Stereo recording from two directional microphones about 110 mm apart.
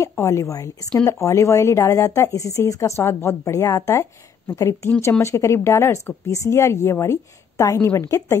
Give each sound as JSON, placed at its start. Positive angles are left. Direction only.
{"t": 0.1, "sound": "a woman's voice", "side_deg": 25}